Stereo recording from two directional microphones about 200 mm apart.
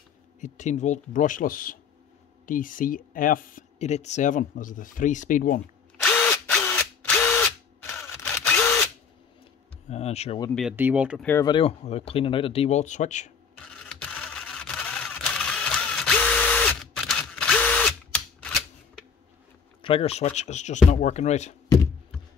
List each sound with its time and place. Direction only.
0.4 s speech: 35° left (ahead or behind)
6.0 s drill: 5° left (ahead or behind)
9.8 s speech: 30° left (ahead or behind)
10.8 s speech: 10° right (ahead or behind)
11.2 s speech: 15° left (ahead or behind)
11.5 s speech: 30° left (ahead or behind)
13.8 s camera: 5° left (ahead or behind)
19.8 s speech: 30° left (ahead or behind)